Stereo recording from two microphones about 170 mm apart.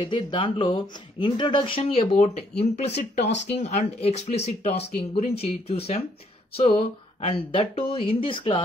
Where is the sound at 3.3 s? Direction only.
90° left.